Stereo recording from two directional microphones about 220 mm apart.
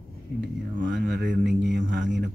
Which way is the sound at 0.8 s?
50° right (ahead or behind).